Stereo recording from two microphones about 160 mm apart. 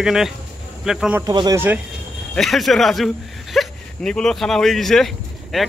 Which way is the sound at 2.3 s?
Centre (ahead or behind).